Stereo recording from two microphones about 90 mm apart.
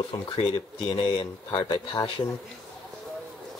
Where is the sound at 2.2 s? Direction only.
50° left (ahead or behind).